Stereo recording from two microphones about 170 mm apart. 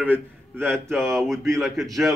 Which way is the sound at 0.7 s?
5° left (ahead or behind).